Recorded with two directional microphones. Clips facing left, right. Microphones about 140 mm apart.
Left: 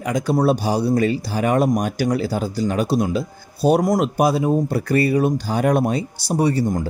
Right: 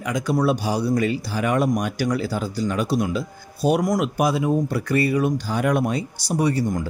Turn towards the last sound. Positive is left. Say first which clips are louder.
# left 2 dB
turn(degrees=30)  # may be behind; listen again after turning